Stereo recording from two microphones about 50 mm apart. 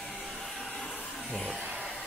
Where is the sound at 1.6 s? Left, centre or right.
Right.